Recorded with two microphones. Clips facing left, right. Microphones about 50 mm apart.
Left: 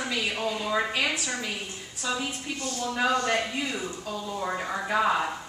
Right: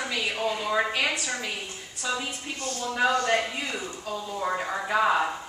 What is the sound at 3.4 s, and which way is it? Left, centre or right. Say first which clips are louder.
A woman's voice: even; centre.